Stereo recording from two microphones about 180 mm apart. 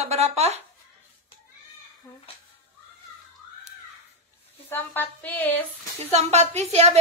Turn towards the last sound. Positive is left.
turn(degrees=-35)  # may be behind; listen again after turning